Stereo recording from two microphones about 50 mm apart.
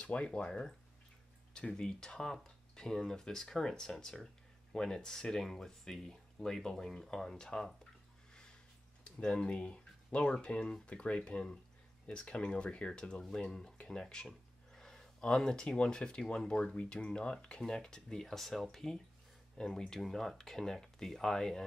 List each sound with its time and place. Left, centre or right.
0.0 s speech: left
0.3 s speech: centre
9.2 s speech: centre